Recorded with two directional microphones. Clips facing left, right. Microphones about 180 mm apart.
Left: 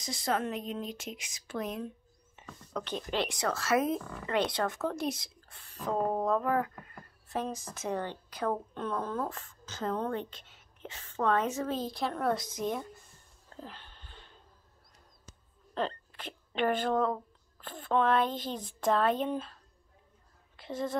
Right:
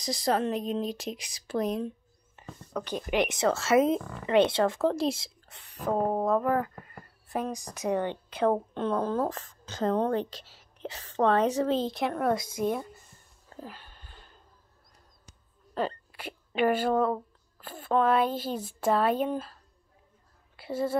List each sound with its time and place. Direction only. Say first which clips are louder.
0.0 s speech: right 5 dB; 35° right (ahead or behind)
2.7 s speech: right 4 dB; 10° right (ahead or behind)
13.5 s a sound: right 3 dB; 5° right (ahead or behind)
15.7 s a woman's voice: right 3 dB; 10° right (ahead or behind)